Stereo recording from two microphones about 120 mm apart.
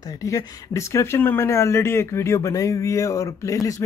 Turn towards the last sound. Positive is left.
turn(degrees=25)  # may be behind; listen again after turning